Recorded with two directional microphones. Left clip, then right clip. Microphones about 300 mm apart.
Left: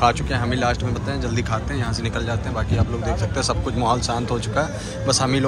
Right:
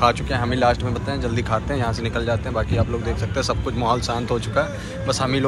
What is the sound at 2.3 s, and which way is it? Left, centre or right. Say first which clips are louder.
Speech: right 3 dB; centre.